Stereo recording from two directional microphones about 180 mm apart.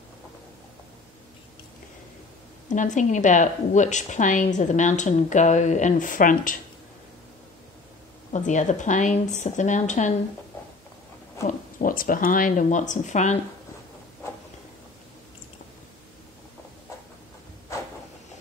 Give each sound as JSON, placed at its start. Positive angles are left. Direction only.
{"t": 2.7, "sound": "a woman's voice", "side_deg": 45}
{"t": 8.3, "sound": "a woman's voice", "side_deg": 40}
{"t": 11.4, "sound": "a woman's voice", "side_deg": 50}